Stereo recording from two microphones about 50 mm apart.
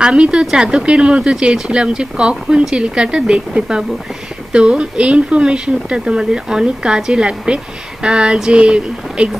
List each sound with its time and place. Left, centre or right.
0.0 s speech: centre